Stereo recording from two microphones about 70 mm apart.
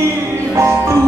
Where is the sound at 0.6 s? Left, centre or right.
Right.